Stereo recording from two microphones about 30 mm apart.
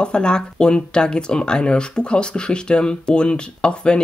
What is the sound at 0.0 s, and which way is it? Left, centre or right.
Speech, left.